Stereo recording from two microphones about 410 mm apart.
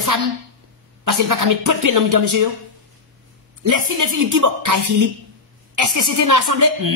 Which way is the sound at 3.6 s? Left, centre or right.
Right.